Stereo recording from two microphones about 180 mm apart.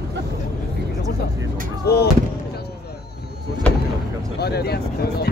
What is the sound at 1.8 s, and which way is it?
Speech, 65° left (ahead or behind).